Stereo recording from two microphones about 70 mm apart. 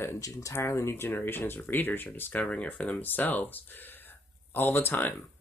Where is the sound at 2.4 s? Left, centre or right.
Centre.